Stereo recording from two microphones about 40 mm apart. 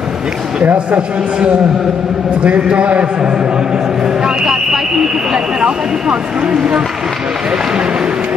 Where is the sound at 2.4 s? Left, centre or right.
Right.